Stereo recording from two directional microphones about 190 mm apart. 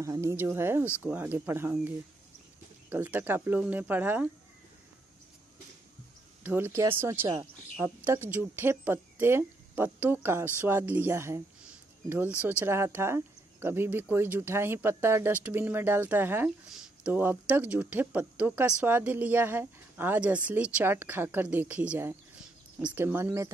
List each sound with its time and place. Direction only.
0.0 s speech: 15° right (ahead or behind)
6.4 s speech: 10° right (ahead or behind)
12.4 s speech: 10° right (ahead or behind)